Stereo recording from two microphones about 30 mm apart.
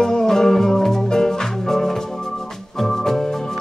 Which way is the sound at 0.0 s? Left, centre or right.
Centre.